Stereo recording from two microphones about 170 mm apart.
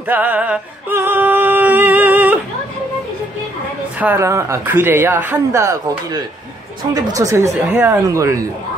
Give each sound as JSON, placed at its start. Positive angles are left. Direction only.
{"t": 0.0, "sound": "music", "side_deg": -10}
{"t": 4.0, "sound": "speech", "side_deg": -15}